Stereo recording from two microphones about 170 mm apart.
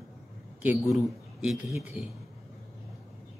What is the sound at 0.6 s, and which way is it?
Speech, 5° right (ahead or behind).